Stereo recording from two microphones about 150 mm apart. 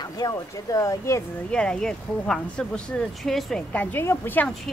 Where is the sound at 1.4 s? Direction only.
5° left (ahead or behind).